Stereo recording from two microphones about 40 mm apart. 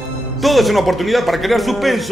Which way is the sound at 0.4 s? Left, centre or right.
Centre.